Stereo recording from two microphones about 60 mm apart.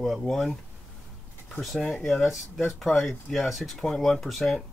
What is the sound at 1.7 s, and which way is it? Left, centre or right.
Speech, centre.